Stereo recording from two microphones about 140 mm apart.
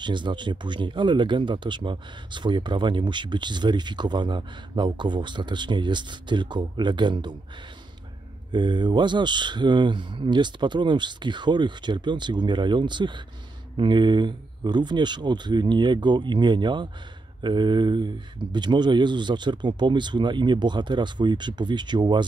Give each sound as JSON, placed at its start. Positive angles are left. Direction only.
{"t": 0.0, "sound": "speech", "side_deg": -35}
{"t": 8.5, "sound": "speech", "side_deg": -35}